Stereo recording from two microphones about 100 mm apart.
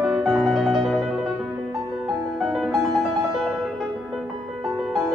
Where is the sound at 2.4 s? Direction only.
Centre (ahead or behind).